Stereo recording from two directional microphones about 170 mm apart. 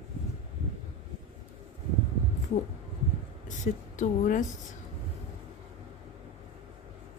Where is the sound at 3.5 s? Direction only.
50° left (ahead or behind).